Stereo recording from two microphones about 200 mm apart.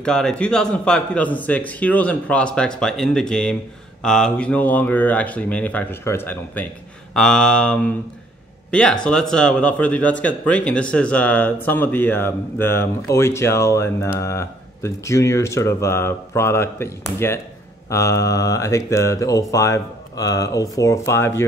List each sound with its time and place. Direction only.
0.0 s a man's voice: 5° left (ahead or behind)